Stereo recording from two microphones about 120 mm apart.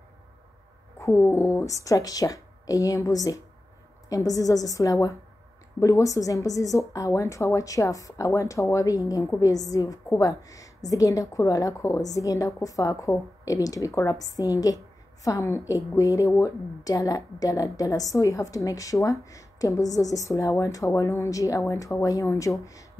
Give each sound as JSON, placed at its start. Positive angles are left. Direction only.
{"t": 0.9, "sound": "a woman's voice", "side_deg": 20}